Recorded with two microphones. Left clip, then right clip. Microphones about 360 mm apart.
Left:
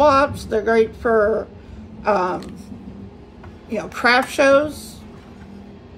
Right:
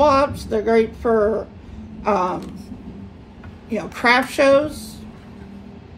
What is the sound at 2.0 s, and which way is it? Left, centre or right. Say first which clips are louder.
Speech: left 1 dB; centre.